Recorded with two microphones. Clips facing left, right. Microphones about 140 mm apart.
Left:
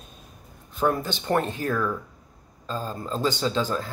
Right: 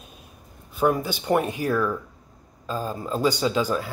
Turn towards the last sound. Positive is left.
turn(degrees=-10)  # may be behind; listen again after turning